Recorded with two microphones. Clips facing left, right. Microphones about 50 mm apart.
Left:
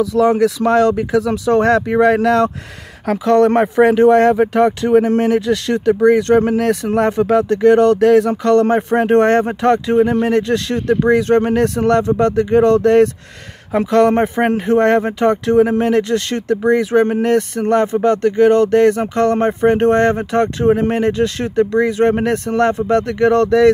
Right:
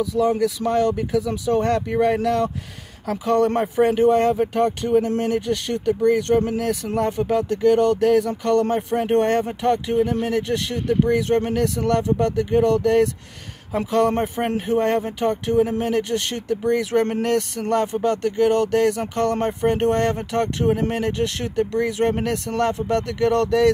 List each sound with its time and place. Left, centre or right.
0.0 s speech: left
17.0 s speech: left